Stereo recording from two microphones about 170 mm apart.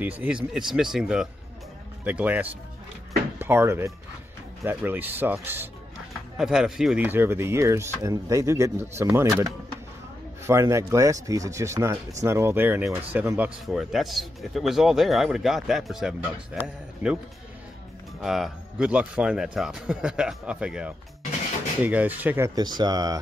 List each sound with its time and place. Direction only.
0.0 s speech: 10° right (ahead or behind)
10.4 s speech: 15° right (ahead or behind)
18.2 s speech: centre (ahead or behind)
22.6 s speech: 25° right (ahead or behind)